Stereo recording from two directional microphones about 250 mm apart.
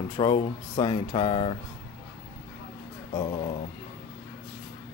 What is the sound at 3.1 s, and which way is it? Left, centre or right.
Speech, centre.